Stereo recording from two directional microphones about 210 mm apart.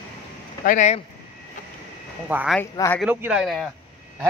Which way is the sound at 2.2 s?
10° right (ahead or behind).